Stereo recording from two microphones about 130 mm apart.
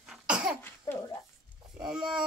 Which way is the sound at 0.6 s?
15° left (ahead or behind).